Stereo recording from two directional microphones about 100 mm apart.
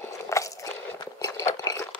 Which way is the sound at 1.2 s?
40° left (ahead or behind).